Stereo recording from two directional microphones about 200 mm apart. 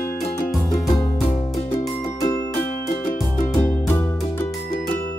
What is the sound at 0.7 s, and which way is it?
Music, 15° left (ahead or behind).